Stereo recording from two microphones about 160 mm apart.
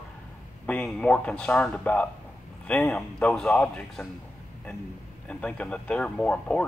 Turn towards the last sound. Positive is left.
turn(degrees=5)  # may be behind; listen again after turning